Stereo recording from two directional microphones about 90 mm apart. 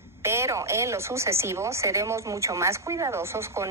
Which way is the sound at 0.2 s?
30° right (ahead or behind).